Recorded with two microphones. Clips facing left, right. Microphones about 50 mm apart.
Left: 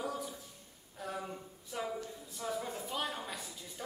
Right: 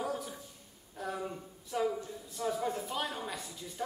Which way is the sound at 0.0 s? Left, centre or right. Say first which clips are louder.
Right 2 dB; centre.